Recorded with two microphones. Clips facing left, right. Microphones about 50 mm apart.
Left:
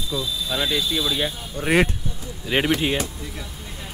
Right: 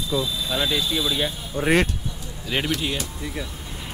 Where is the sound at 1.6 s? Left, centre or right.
Centre.